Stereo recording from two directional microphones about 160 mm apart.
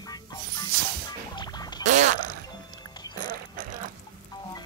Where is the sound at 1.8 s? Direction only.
50° right (ahead or behind).